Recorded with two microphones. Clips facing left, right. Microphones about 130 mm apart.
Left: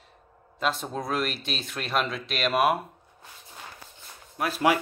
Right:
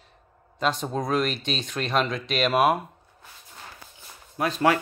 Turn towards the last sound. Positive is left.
turn(degrees=10)  # may be behind; listen again after turning